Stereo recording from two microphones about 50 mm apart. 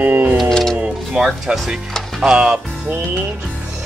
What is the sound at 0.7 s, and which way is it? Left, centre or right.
Music, right.